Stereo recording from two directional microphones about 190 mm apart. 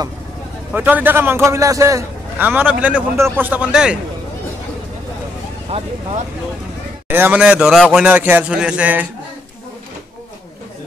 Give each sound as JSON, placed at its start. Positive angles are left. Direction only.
{"t": 0.7, "sound": "a man's voice", "side_deg": -10}
{"t": 5.7, "sound": "speech", "side_deg": -30}
{"t": 7.1, "sound": "a man's voice", "side_deg": -10}